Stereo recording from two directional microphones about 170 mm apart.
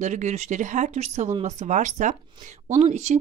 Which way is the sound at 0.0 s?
45° right (ahead or behind).